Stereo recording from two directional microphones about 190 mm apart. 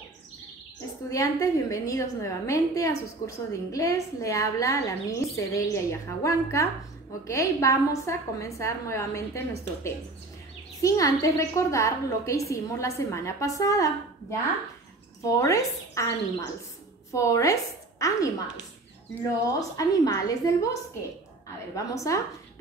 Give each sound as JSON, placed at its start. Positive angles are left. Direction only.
{"t": 1.1, "sound": "a woman's voice", "side_deg": 15}
{"t": 3.2, "sound": "a woman's voice", "side_deg": 45}
{"t": 3.7, "sound": "a woman's voice", "side_deg": 15}
{"t": 10.8, "sound": "a woman's voice", "side_deg": 15}
{"t": 21.7, "sound": "a woman's voice", "side_deg": 15}